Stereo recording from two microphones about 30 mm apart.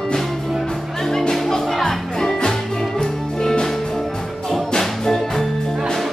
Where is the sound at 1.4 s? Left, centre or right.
Centre.